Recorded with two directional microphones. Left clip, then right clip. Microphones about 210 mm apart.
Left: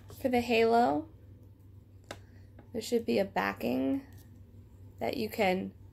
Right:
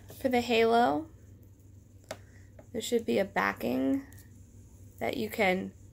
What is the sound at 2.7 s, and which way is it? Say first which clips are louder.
Speech: right 1 dB; 5° right (ahead or behind).